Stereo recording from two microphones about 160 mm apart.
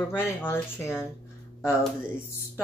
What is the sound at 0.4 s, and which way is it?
Speech, 15° left (ahead or behind).